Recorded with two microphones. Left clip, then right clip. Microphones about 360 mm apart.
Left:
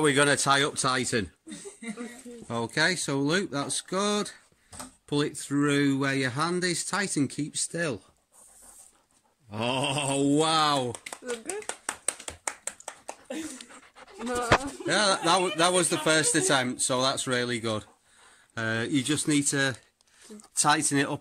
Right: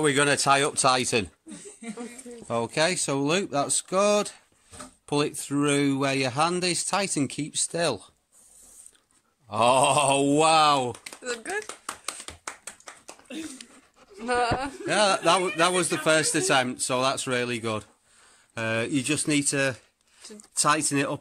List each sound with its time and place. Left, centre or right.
0.0 s speech: centre
1.8 s a sound: centre
2.4 s speech: centre
9.5 s speech: centre
11.3 s speech: right
11.6 s clapping: centre
14.9 s speech: centre